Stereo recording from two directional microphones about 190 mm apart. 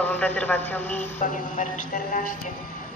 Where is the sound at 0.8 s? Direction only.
40° left (ahead or behind).